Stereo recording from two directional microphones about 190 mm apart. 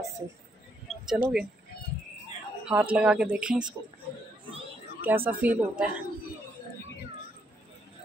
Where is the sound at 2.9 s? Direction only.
5° right (ahead or behind).